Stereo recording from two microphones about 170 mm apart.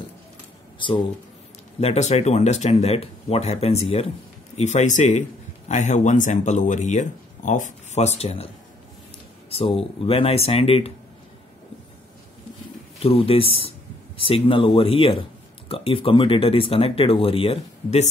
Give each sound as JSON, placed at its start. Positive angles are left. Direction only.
{"t": 0.7, "sound": "a sound", "side_deg": 30}
{"t": 1.8, "sound": "speech", "side_deg": 40}
{"t": 9.5, "sound": "speech", "side_deg": 35}
{"t": 13.0, "sound": "speech", "side_deg": 35}